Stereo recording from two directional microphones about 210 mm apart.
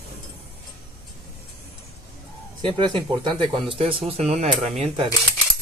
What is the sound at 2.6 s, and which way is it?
Speech, 20° right (ahead or behind).